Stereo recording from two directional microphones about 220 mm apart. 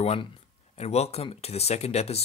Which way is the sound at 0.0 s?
30° left (ahead or behind).